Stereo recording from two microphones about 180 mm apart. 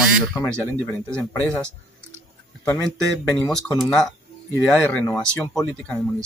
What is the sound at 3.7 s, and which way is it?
Speech, 5° left (ahead or behind).